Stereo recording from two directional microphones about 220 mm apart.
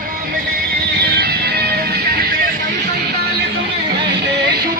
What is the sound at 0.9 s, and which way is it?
Music, 45° right (ahead or behind).